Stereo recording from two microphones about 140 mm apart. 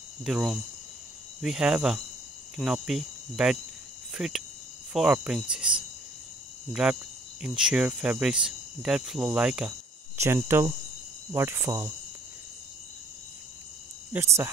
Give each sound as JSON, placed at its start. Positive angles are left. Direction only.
{"t": 0.2, "sound": "cricket", "side_deg": -5}
{"t": 4.1, "sound": "speech", "side_deg": -5}
{"t": 4.9, "sound": "cricket", "side_deg": -5}
{"t": 10.1, "sound": "cricket", "side_deg": -20}
{"t": 14.1, "sound": "cricket", "side_deg": -20}